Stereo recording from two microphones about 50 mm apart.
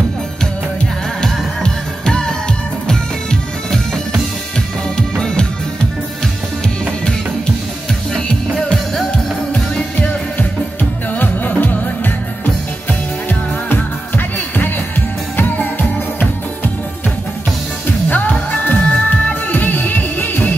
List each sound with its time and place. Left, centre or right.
1.2 s music: centre
9.9 s music: left
13.3 s music: left
18.0 s music: left